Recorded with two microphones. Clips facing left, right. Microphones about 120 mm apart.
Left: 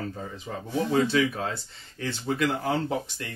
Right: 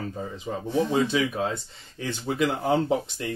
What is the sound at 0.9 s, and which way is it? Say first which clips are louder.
Speech: even; 15° right (ahead or behind).